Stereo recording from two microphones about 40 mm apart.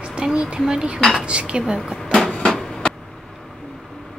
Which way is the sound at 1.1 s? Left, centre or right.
Right.